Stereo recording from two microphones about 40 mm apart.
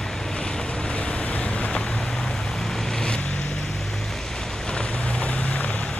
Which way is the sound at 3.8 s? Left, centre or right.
Centre.